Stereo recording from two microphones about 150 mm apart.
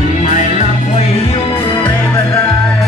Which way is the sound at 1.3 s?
35° left (ahead or behind).